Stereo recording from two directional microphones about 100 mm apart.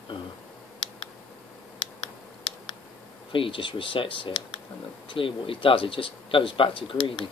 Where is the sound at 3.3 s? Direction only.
60° left (ahead or behind).